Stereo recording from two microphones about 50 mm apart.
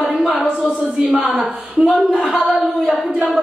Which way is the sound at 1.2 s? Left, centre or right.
Centre.